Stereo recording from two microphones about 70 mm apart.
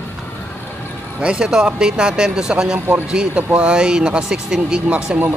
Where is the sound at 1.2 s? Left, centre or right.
Centre.